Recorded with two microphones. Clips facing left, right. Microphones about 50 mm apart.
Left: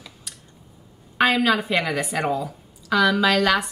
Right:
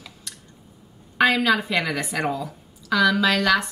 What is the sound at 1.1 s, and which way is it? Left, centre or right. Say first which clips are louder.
A woman's voice: even; centre.